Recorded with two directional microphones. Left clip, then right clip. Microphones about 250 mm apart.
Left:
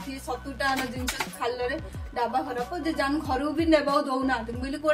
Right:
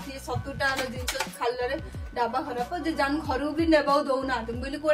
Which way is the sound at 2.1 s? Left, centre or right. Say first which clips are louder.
Left 1 dB; centre.